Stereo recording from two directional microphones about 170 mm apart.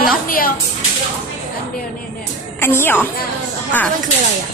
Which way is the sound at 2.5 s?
15° left (ahead or behind).